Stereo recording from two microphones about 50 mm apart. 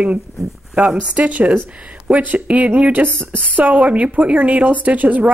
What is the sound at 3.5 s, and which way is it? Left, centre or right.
Speech, right.